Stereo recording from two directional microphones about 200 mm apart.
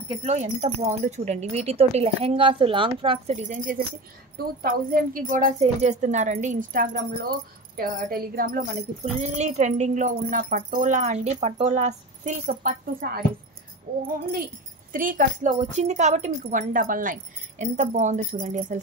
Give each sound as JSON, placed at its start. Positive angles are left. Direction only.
{"t": 0.2, "sound": "speech", "side_deg": -35}
{"t": 9.0, "sound": "speech", "side_deg": -35}